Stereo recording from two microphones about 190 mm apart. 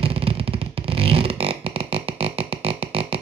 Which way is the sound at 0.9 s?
30° right (ahead or behind).